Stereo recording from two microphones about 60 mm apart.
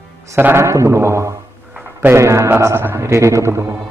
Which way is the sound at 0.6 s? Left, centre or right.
Right.